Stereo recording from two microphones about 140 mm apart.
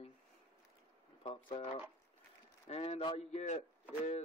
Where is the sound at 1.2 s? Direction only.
40° left (ahead or behind); by 4.2 s 55° left (ahead or behind).